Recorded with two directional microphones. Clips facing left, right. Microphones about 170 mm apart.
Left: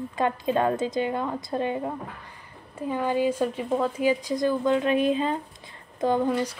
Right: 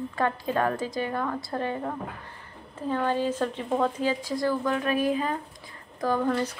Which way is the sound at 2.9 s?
10° left (ahead or behind).